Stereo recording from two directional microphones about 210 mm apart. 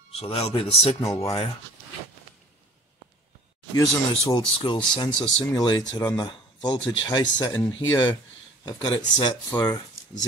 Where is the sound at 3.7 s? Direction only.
15° left (ahead or behind).